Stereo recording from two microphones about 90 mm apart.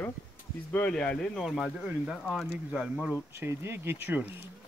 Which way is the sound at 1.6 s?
10° right (ahead or behind).